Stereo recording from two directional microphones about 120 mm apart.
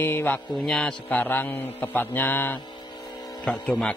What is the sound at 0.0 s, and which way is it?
A man's voice, 15° left (ahead or behind).